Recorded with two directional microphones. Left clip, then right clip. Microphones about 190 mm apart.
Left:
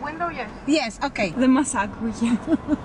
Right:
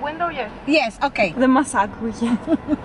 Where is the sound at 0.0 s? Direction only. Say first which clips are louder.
Right 4 dB; 30° right (ahead or behind).